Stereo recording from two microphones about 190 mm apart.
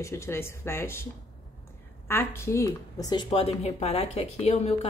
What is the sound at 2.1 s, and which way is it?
A woman's voice, 15° left (ahead or behind).